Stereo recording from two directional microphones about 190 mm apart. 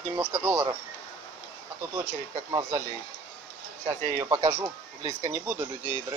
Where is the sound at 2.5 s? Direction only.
20° right (ahead or behind).